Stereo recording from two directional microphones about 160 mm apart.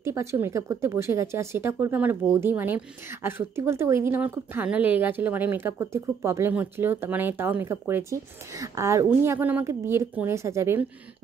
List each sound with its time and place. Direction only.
0.0 s a woman's voice: 15° right (ahead or behind)